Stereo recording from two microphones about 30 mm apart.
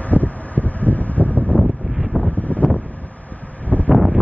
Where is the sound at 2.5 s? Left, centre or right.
Left.